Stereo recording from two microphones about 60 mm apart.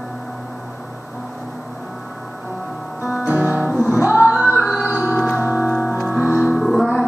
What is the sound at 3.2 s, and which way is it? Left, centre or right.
Music, right.